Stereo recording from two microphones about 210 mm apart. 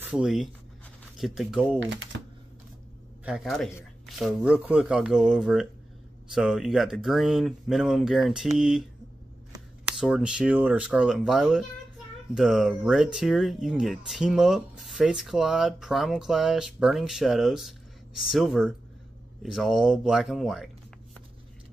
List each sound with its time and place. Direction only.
0.1 s speech: centre (ahead or behind)
1.8 s speech: 60° right (ahead or behind)
3.3 s speech: centre (ahead or behind)
9.8 s speech: 5° right (ahead or behind)